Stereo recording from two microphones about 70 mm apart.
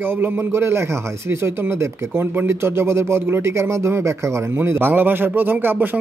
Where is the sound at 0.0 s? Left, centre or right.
Right.